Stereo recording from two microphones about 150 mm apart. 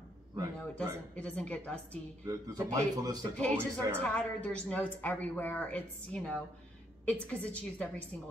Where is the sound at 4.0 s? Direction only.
10° left (ahead or behind).